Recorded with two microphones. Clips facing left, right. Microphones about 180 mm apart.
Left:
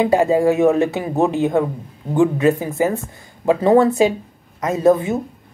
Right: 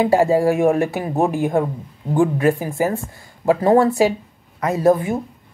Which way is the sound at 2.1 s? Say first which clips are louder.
Left 2 dB; 20° left (ahead or behind).